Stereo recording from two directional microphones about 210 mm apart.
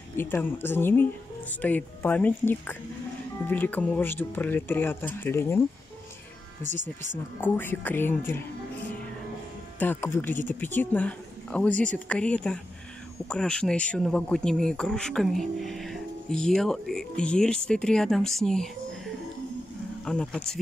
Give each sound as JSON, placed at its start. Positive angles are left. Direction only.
{"t": 0.2, "sound": "speech", "side_deg": 10}
{"t": 6.6, "sound": "speech", "side_deg": -35}
{"t": 7.3, "sound": "speech", "side_deg": 10}
{"t": 9.8, "sound": "speech", "side_deg": 10}
{"t": 20.1, "sound": "speech", "side_deg": 5}